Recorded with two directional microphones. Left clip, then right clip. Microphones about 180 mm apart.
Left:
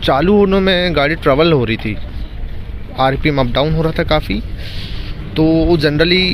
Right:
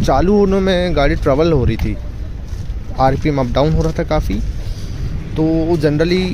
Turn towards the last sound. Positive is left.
turn(degrees=-10)  # may be behind; listen again after turning